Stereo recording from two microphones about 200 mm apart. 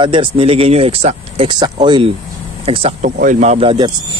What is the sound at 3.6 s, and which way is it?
Speech, 30° right (ahead or behind).